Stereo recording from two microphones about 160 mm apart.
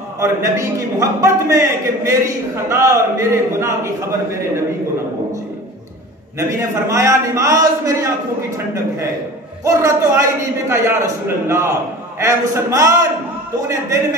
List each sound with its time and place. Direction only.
0.2 s a man's voice: 20° right (ahead or behind)
6.7 s a man's voice: 20° right (ahead or behind)